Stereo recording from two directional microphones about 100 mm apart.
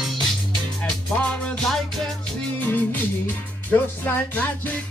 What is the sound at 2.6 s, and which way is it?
Music, 20° left (ahead or behind).